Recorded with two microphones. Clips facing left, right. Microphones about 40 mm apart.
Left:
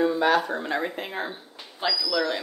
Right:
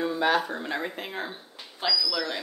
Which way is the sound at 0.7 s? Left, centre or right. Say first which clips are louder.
Left 3 dB; centre.